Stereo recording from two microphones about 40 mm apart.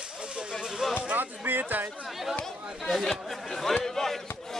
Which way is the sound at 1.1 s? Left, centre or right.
Right.